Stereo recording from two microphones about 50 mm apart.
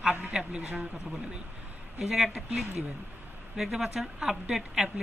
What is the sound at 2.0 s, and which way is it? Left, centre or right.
Speech, centre.